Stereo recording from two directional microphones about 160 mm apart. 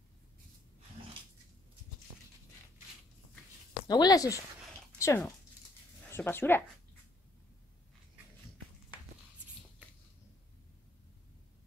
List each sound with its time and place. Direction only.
3.8 s speech: 25° left (ahead or behind)